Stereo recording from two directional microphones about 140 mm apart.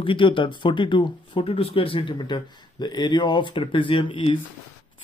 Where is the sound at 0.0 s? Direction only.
35° left (ahead or behind).